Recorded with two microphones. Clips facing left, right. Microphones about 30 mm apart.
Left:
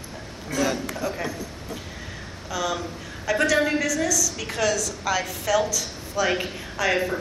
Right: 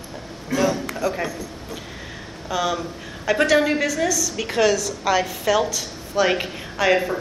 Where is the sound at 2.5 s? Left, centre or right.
Right.